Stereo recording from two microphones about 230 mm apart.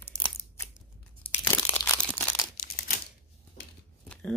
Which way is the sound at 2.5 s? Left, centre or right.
Left.